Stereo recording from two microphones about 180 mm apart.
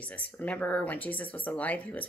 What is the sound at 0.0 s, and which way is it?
Speech, 10° left (ahead or behind).